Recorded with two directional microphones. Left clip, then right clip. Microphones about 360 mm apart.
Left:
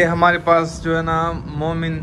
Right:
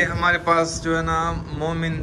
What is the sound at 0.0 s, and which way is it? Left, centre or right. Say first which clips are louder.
A man's voice: left 5 dB; centre.